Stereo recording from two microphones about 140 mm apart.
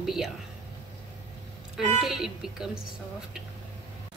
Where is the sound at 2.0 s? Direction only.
5° right (ahead or behind).